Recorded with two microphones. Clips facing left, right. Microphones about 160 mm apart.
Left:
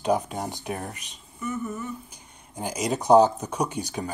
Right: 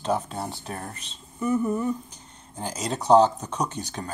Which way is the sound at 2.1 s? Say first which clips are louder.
Even; 10° left (ahead or behind).